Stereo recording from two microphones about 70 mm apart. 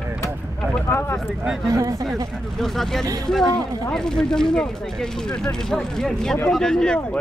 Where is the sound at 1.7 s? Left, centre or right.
Right.